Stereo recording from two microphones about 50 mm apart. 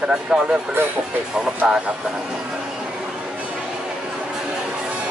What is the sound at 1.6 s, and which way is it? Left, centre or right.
Speech, centre.